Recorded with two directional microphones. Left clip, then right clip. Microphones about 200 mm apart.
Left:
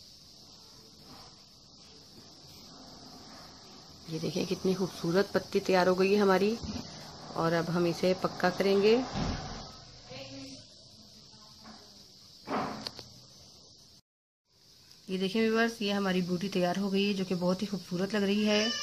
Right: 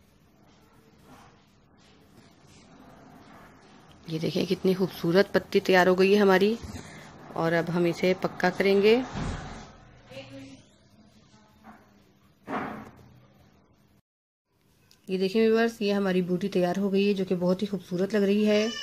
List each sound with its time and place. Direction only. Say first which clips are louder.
4.1 s speech: right 5 dB; 20° right (ahead or behind)
15.0 s speech: right 6 dB; 20° right (ahead or behind)